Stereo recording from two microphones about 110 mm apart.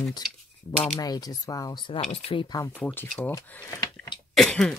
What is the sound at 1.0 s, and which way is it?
Speech, 35° left (ahead or behind).